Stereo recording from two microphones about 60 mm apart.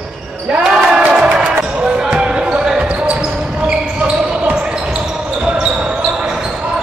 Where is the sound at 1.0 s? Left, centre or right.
Right.